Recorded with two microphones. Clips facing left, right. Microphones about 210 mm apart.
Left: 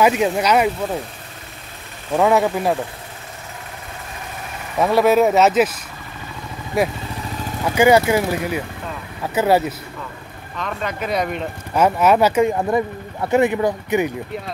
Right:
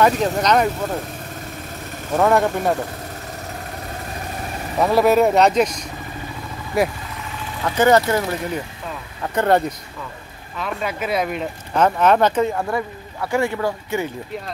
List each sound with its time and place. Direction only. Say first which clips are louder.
0.0 s speech: left 1 dB; 10° left (ahead or behind)
2.1 s speech: left 1 dB; 5° left (ahead or behind)
4.7 s speech: left 1 dB; centre (ahead or behind)
10.6 s speech: even; 5° right (ahead or behind)
11.7 s speech: left 1 dB; 10° left (ahead or behind)